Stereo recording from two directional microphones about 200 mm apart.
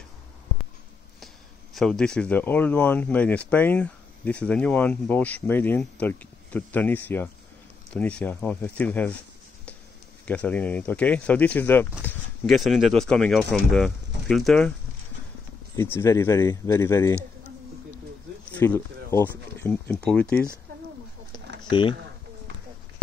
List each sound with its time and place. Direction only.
1.2 s speech: centre (ahead or behind)
10.2 s speech: 5° left (ahead or behind)
15.7 s speech: 10° left (ahead or behind)
18.5 s speech: 10° left (ahead or behind)
21.6 s speech: 25° left (ahead or behind)